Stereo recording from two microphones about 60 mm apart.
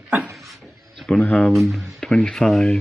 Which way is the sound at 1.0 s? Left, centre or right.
Centre.